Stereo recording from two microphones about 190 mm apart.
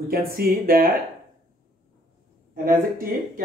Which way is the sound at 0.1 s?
50° right (ahead or behind).